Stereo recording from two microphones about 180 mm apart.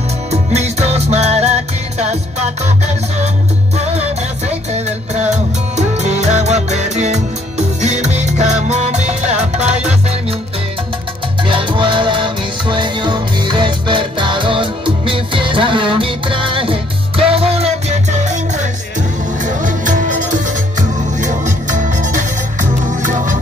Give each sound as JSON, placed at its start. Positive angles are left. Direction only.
{"t": 0.3, "sound": "music", "side_deg": -35}
{"t": 4.5, "sound": "music", "side_deg": -40}
{"t": 11.4, "sound": "music", "side_deg": -25}